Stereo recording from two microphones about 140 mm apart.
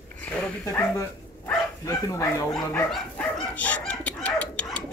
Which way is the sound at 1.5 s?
25° left (ahead or behind).